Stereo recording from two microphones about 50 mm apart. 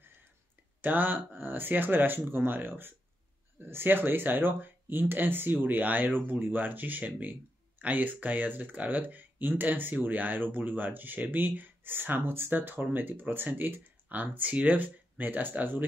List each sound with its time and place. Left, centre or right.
0.7 s speech: right